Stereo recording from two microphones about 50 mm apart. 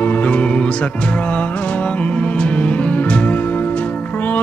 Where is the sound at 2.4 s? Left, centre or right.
Left.